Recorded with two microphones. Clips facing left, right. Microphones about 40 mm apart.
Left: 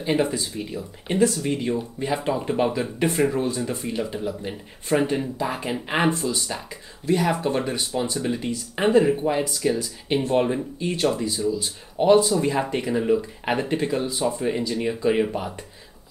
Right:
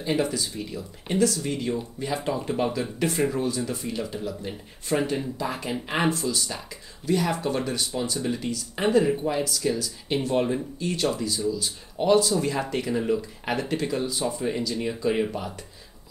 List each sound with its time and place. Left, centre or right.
0.0 s speech: left